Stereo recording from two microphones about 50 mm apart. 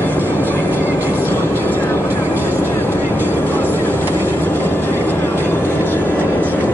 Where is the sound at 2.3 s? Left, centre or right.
Left.